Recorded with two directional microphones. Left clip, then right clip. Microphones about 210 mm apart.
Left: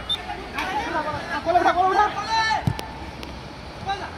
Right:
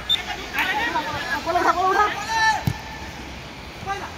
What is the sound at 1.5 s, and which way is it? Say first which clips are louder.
Chatter: left 1 dB; 35° left (ahead or behind).